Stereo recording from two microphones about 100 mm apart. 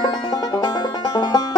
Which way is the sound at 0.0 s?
45° left (ahead or behind).